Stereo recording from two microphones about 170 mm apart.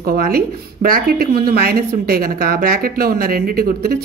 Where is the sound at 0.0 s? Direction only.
60° right (ahead or behind).